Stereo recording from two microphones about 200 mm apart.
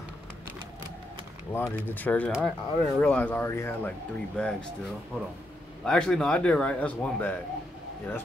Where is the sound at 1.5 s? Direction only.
10° left (ahead or behind).